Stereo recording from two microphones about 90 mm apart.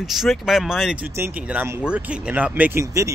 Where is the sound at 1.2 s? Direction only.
15° right (ahead or behind).